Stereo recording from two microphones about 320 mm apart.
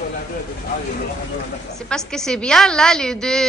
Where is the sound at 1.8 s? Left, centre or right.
Centre.